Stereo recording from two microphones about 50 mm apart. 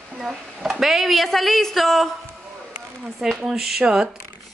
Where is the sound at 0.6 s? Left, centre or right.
Centre.